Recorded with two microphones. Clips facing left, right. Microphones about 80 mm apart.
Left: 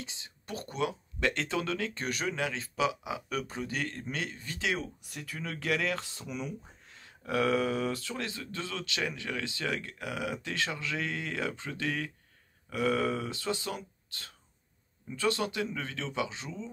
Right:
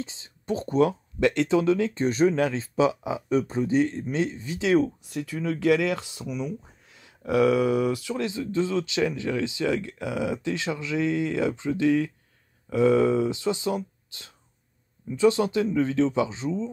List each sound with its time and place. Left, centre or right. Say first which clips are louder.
0.0 s speech: right 9 dB; right
1.2 s speech: right 10 dB; right
6.2 s speech: right 8 dB; centre
6.9 s speech: right 8 dB; centre